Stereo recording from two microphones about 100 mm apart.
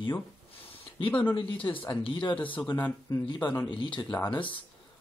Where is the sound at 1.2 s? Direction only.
55° left (ahead or behind).